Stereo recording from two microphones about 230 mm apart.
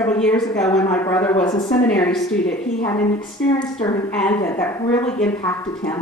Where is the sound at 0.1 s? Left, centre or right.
Centre.